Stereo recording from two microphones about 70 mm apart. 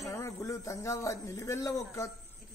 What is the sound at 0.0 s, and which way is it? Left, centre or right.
Speech, left.